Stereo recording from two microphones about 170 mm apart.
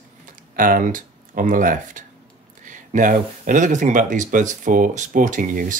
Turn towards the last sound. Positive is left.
turn(degrees=-50)  # may be behind; listen again after turning